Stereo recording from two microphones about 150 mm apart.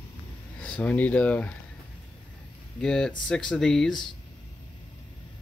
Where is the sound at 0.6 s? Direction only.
10° left (ahead or behind).